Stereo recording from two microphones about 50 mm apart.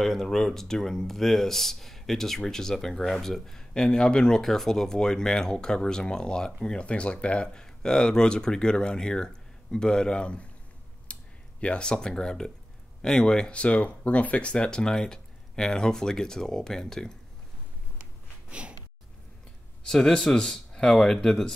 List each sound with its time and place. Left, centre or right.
0.0 s speech: centre
3.7 s speech: centre
11.1 s a sound: left
11.6 s speech: left
18.5 s a sound: right
19.9 s speech: centre